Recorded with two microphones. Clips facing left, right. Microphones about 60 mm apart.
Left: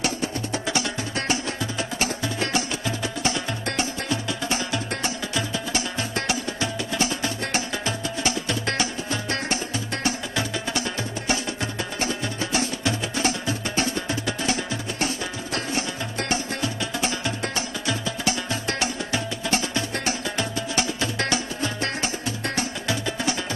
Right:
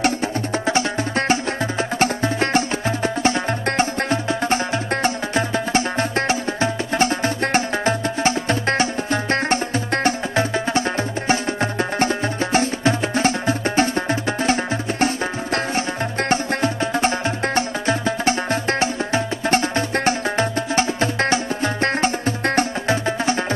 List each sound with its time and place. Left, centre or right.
0.0 s music: right